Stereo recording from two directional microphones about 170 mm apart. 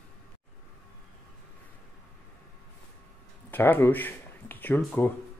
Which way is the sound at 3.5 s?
10° left (ahead or behind).